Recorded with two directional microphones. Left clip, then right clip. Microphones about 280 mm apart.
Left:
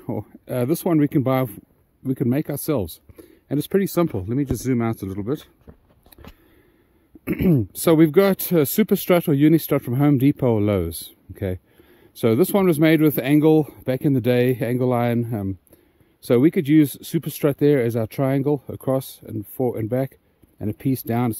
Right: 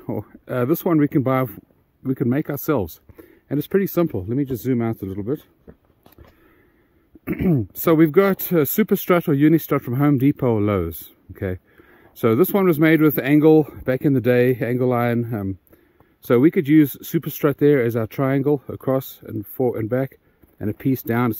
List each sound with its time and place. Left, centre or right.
0.0 s speech: centre
5.7 s a sound: left
7.2 s speech: centre